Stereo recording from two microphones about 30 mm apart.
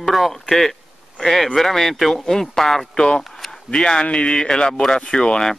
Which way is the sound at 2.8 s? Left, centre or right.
Left.